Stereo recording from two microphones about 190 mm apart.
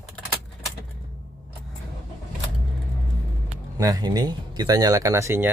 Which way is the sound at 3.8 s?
20° right (ahead or behind).